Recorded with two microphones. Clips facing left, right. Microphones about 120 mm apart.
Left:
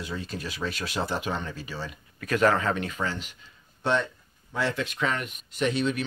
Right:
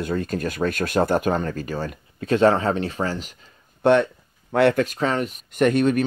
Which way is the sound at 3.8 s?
60° right (ahead or behind).